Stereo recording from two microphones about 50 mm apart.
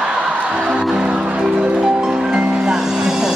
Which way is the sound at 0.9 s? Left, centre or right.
Centre.